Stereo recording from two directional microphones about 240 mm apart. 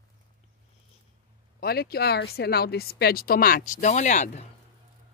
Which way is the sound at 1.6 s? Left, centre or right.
Left.